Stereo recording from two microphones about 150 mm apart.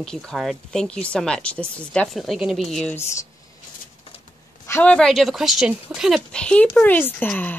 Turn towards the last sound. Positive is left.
turn(degrees=10)  # may be behind; listen again after turning